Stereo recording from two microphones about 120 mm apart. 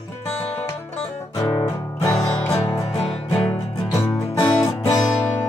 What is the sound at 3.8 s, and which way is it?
Music, 25° left (ahead or behind).